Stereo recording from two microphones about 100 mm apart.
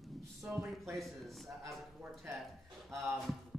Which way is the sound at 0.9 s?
Centre (ahead or behind).